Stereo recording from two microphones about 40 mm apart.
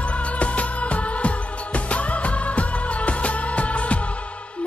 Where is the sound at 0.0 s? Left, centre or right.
Left.